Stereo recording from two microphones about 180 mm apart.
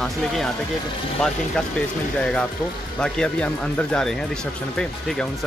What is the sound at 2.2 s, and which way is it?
Speech, 5° left (ahead or behind).